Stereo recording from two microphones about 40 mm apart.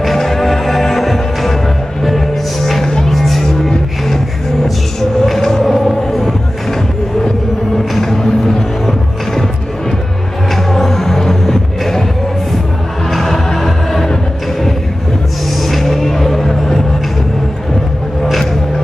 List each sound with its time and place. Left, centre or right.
0.0 s music: centre
5.2 s vehicle: centre
7.7 s music: centre
13.1 s music: centre
15.6 s music: centre
18.2 s music: centre